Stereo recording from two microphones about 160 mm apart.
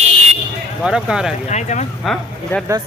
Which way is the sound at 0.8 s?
5° right (ahead or behind).